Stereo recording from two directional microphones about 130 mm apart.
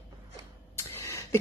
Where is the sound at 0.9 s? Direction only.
25° left (ahead or behind).